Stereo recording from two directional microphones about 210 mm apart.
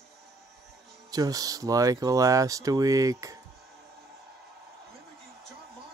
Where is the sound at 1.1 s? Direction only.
15° right (ahead or behind).